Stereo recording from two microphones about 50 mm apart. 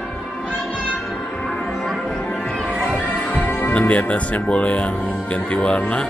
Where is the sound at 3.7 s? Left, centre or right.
Left.